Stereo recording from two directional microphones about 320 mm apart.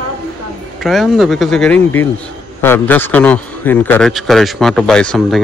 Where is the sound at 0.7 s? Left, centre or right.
Centre.